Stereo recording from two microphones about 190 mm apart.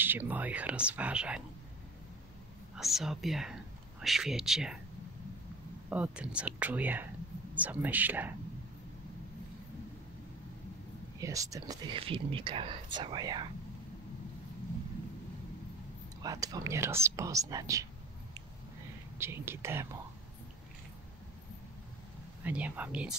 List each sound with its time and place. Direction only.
0.0 s speech: 10° right (ahead or behind)
2.7 s speech: centre (ahead or behind)
5.9 s speech: 5° right (ahead or behind)
11.1 s speech: 15° right (ahead or behind)
16.2 s speech: 20° right (ahead or behind)
19.1 s speech: 15° right (ahead or behind)
22.4 s speech: 10° right (ahead or behind)